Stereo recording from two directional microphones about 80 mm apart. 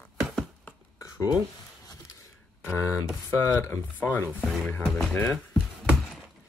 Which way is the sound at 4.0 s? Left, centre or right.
Left.